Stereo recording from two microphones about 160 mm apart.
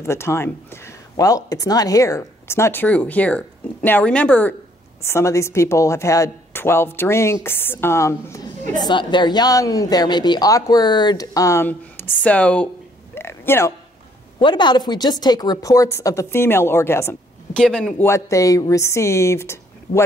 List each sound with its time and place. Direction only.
0.0 s a woman's voice: 15° left (ahead or behind)
13.1 s a sound: 15° left (ahead or behind)
14.4 s a woman's voice: 30° left (ahead or behind)
17.6 s speech: 5° left (ahead or behind)
18.0 s speech: 20° left (ahead or behind)